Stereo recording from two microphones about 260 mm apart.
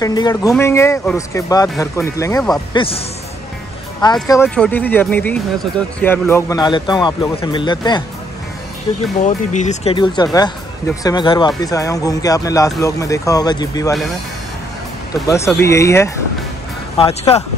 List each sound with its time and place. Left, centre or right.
0.0 s speech: centre
4.0 s speech: centre
15.2 s speech: centre
17.0 s speech: left